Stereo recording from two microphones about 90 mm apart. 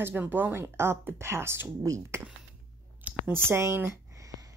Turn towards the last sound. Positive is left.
turn(degrees=-40)  # may be behind; listen again after turning